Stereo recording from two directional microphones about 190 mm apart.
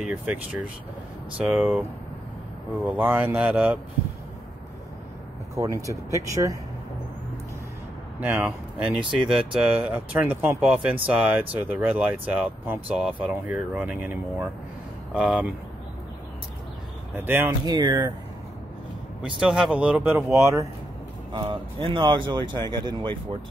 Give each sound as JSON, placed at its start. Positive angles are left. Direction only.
{"t": 0.0, "sound": "speech", "side_deg": -10}
{"t": 5.6, "sound": "speech", "side_deg": -15}
{"t": 8.2, "sound": "speech", "side_deg": -10}
{"t": 17.2, "sound": "speech", "side_deg": -10}
{"t": 17.6, "sound": "speech", "side_deg": -20}
{"t": 19.4, "sound": "speech", "side_deg": -5}
{"t": 21.3, "sound": "speech", "side_deg": -25}